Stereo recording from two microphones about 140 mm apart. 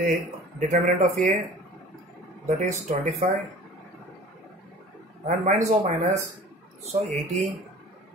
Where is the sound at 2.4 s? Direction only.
60° right (ahead or behind).